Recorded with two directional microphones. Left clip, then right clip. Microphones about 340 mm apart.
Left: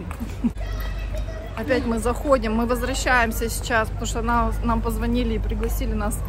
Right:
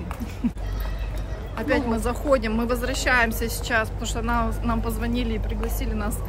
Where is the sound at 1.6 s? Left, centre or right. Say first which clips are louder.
Left 1 dB; centre.